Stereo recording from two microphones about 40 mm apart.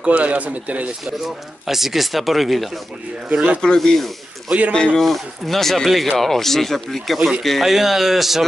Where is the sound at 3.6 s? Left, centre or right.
Centre.